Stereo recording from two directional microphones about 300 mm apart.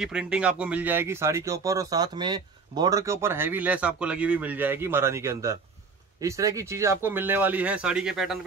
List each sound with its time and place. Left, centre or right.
0.0 s speech: centre